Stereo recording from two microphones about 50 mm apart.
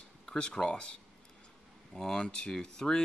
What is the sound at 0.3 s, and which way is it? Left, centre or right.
Speech, centre.